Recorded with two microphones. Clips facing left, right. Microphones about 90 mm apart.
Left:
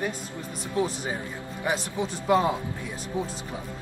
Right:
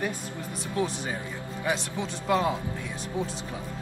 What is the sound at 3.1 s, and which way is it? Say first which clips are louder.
Speech: left 1 dB; 35° left (ahead or behind).